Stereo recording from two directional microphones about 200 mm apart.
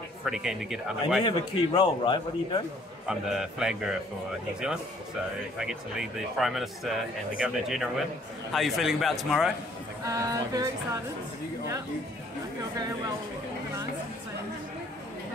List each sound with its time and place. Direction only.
0.2 s speech: centre (ahead or behind)
1.2 s a man's voice: 25° left (ahead or behind)
3.1 s speech: 5° right (ahead or behind)
5.6 s speech: 5° right (ahead or behind)
10.0 s a sound: 15° right (ahead or behind)